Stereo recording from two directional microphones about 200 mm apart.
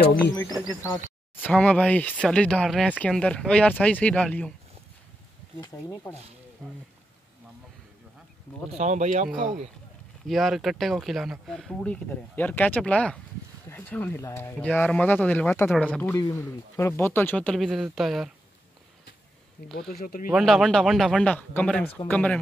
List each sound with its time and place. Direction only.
0.9 s speech: 10° left (ahead or behind)
5.6 s speech: 20° left (ahead or behind)
6.6 s speech: 5° left (ahead or behind)
8.7 s speech: 35° right (ahead or behind)
10.2 s speech: centre (ahead or behind)
19.9 s speech: 50° left (ahead or behind)
20.2 s speech: centre (ahead or behind)